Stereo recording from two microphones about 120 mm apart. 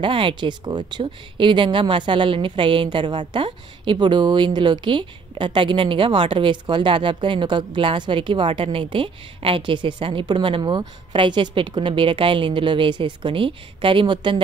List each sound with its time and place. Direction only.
0.0 s a woman's voice: 45° right (ahead or behind)